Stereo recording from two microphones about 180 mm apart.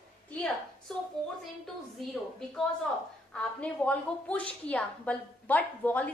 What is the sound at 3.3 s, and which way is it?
A woman's voice, 5° left (ahead or behind).